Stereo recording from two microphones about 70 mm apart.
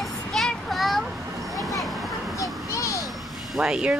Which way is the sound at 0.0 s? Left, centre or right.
Centre.